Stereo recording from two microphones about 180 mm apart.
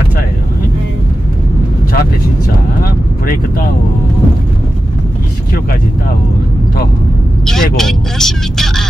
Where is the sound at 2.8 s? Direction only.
55° left (ahead or behind).